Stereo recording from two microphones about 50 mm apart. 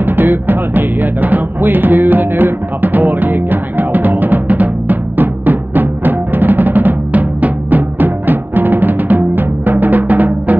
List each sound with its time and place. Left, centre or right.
0.0 s music: right